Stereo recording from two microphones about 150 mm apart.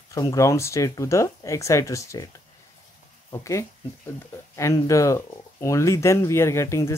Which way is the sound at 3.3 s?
20° left (ahead or behind).